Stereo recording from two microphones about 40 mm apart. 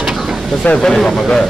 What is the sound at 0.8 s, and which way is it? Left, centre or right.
Speech, centre.